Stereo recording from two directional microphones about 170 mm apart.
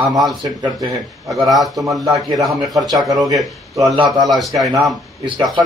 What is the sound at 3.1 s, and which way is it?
Speech, 20° right (ahead or behind).